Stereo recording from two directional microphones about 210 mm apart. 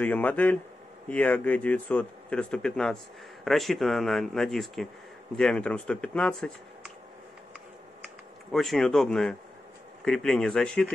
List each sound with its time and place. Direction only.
0.0 s a man's voice: 5° left (ahead or behind)
8.5 s speech: centre (ahead or behind)